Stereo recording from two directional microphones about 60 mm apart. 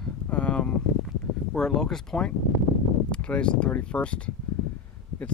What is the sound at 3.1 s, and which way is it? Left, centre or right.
Speech, centre.